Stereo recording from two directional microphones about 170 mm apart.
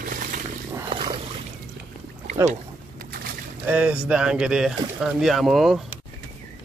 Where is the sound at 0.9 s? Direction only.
25° right (ahead or behind).